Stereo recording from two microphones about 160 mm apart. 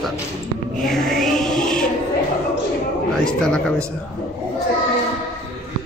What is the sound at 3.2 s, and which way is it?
Speech, 5° left (ahead or behind).